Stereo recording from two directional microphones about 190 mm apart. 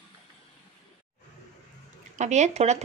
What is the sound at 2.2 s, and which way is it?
Speech, 40° right (ahead or behind).